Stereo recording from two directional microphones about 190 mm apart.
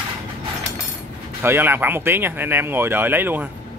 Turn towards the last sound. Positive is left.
turn(degrees=-10)  # may be behind; listen again after turning